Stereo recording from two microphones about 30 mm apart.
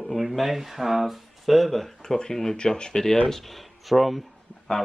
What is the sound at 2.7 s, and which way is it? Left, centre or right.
Speech, left.